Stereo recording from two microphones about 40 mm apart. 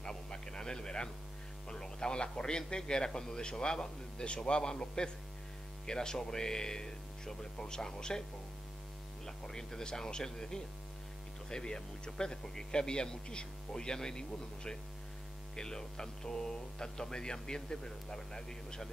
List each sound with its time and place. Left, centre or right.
0.0 s a sound: centre
1.7 s a man's voice: centre
9.2 s a man's voice: centre